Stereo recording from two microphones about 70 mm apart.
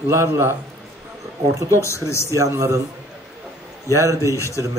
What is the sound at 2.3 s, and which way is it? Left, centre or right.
Speech, right.